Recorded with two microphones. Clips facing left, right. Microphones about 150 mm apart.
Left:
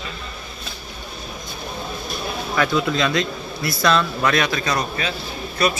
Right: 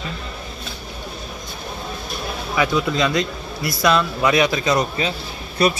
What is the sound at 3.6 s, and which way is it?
A man's voice, 10° right (ahead or behind).